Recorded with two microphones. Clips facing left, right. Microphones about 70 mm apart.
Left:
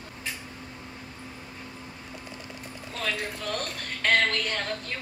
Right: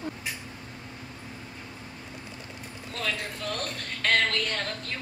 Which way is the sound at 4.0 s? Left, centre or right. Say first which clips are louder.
Left 1 dB; centre.